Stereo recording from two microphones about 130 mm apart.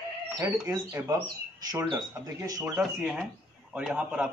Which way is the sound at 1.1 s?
30° right (ahead or behind).